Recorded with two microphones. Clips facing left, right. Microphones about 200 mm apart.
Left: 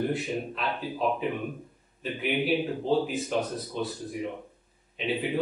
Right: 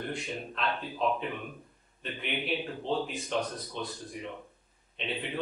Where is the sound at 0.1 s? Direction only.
5° left (ahead or behind).